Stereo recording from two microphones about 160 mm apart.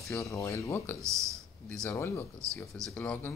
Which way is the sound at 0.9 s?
20° right (ahead or behind).